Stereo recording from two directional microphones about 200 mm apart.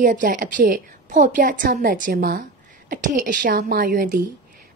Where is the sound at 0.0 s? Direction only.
40° right (ahead or behind).